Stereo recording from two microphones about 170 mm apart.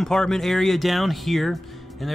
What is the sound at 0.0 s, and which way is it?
Speech, 5° left (ahead or behind).